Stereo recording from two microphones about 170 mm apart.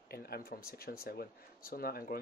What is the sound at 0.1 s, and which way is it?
Speech, 65° left (ahead or behind).